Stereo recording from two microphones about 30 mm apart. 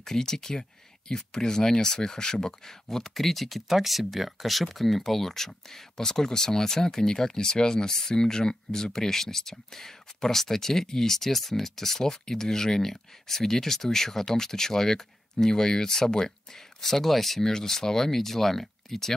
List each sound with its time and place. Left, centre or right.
0.0 s speech: centre
7.9 s speech: centre
17.5 s speech: centre